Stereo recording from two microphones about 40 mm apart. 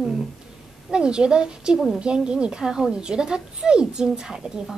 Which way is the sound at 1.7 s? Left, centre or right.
Centre.